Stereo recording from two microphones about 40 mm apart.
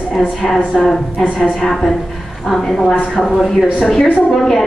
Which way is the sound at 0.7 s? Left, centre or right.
Centre.